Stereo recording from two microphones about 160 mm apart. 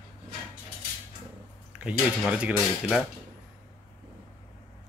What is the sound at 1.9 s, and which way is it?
Speech, 5° right (ahead or behind).